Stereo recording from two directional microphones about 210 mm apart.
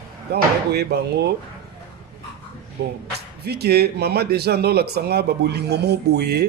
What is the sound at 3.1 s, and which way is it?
Speech, 50° right (ahead or behind).